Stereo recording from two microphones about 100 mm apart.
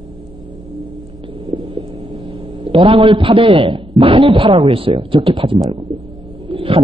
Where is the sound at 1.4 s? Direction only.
55° right (ahead or behind).